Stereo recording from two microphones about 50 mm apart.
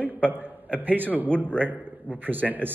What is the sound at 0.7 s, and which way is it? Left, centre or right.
Speech, right.